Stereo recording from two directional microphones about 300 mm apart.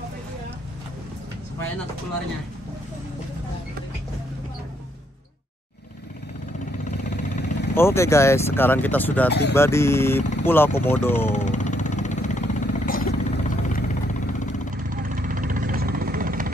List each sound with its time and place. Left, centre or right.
6.8 s vehicle: left
7.7 s speech: centre
11.2 s vehicle: left
14.9 s vehicle: right